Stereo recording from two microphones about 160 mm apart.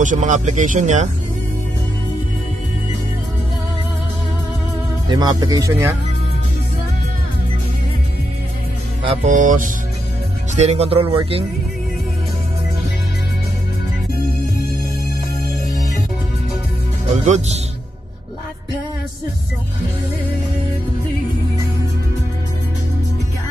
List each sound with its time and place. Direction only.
0.0 s speech: 50° right (ahead or behind)
5.0 s speech: 25° right (ahead or behind)
9.3 s speech: 55° right (ahead or behind)
10.5 s speech: 45° right (ahead or behind)
17.1 s speech: 45° right (ahead or behind)